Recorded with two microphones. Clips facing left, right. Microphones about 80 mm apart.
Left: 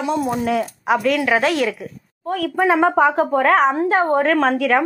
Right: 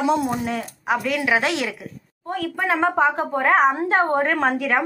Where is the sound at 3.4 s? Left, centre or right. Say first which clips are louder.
Left 1 dB; centre.